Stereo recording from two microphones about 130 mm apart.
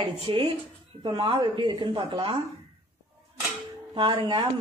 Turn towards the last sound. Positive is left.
turn(degrees=-35)  # may be behind; listen again after turning